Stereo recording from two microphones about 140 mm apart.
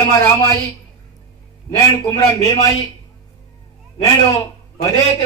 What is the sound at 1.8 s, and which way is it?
Speech, 20° left (ahead or behind).